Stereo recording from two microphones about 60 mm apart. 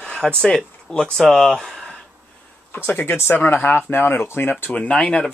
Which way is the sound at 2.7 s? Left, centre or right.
Left.